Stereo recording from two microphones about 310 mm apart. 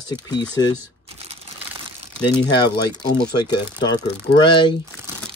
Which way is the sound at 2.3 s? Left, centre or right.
Centre.